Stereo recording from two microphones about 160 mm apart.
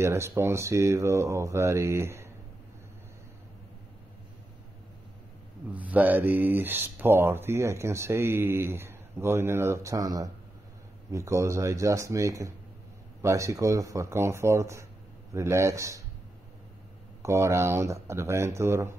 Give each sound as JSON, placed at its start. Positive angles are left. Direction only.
{"t": 0.0, "sound": "speech", "side_deg": -15}
{"t": 5.7, "sound": "speech", "side_deg": -10}
{"t": 17.2, "sound": "speech", "side_deg": -15}